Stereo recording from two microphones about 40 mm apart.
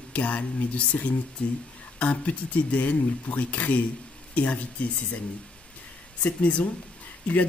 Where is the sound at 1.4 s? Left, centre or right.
Left.